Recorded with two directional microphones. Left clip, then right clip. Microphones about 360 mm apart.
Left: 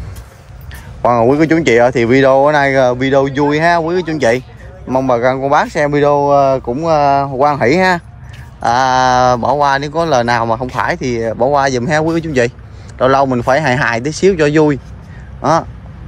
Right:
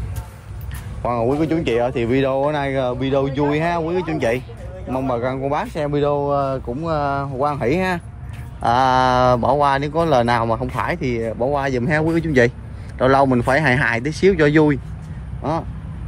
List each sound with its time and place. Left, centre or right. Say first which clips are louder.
1.3 s speech: left 8 dB; left
1.7 s speech: left 11 dB; left
2.0 s speech: left 10 dB; centre